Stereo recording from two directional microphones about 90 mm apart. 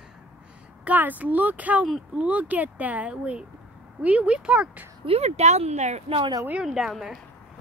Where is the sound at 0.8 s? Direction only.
20° right (ahead or behind).